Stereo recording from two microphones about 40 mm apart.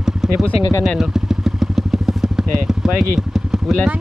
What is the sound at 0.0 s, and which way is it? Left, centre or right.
Vehicle, centre.